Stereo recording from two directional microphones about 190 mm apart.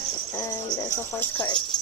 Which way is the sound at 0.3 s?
15° left (ahead or behind).